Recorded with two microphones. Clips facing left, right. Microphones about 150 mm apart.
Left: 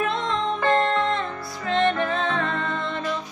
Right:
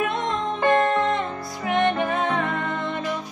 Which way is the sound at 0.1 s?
20° right (ahead or behind).